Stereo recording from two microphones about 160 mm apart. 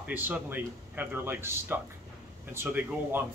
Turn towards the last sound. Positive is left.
turn(degrees=-10)  # may be behind; listen again after turning